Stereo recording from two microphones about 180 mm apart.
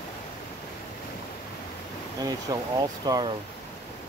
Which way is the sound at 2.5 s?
20° right (ahead or behind).